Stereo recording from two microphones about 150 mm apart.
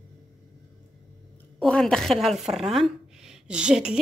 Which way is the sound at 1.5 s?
5° left (ahead or behind).